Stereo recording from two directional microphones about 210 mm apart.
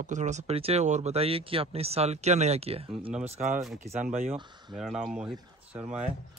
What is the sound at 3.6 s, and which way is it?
Speech, 10° right (ahead or behind).